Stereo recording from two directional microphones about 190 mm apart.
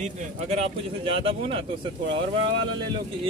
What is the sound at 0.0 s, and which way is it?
Speech, 35° right (ahead or behind).